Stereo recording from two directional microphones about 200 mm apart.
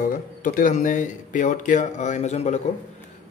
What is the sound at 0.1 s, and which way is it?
A man's voice, 40° left (ahead or behind).